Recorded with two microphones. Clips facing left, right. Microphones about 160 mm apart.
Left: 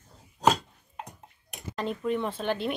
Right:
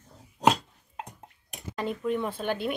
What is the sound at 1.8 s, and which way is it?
Speech, 5° right (ahead or behind).